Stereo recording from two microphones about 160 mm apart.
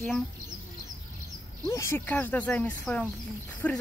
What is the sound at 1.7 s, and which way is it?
Speech, 15° left (ahead or behind).